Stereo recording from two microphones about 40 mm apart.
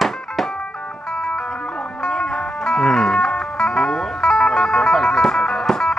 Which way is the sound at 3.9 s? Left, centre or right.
Centre.